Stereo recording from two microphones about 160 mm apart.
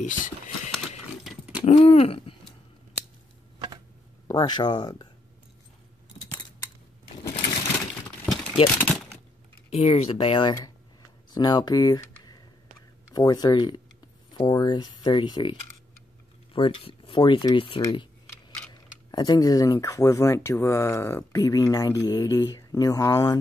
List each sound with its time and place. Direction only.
0.0 s speech: 50° left (ahead or behind)
1.2 s pig: 5° right (ahead or behind)
1.6 s throat clearing: 35° left (ahead or behind)
4.3 s speech: 25° left (ahead or behind)
8.3 s vehicle: 5° left (ahead or behind)
8.6 s speech: 10° left (ahead or behind)
9.7 s speech: 40° left (ahead or behind)
16.5 s speech: 30° left (ahead or behind)